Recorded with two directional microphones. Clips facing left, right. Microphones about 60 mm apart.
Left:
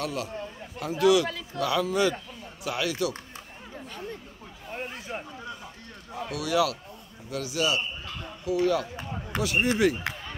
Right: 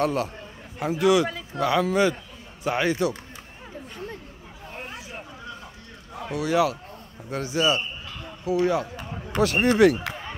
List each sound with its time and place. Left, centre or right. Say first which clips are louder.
0.0 s a man's voice: right 8 dB; right
0.7 s a man's voice: right 1 dB; right
6.3 s a man's voice: right 3 dB; right
9.4 s speech: right 6 dB; right